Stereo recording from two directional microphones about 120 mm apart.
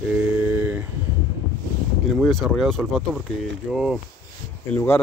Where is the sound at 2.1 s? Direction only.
5° left (ahead or behind).